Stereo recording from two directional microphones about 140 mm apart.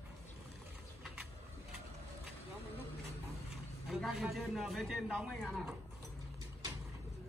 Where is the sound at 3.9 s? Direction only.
Centre (ahead or behind).